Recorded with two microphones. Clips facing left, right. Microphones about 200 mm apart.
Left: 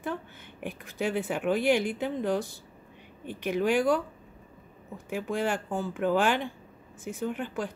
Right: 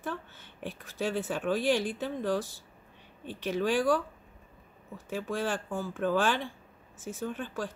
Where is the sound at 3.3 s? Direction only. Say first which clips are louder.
Left 2 dB; 55° left (ahead or behind).